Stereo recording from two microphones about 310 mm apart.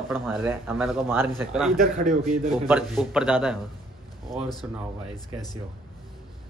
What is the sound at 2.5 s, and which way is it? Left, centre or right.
A man's voice, centre.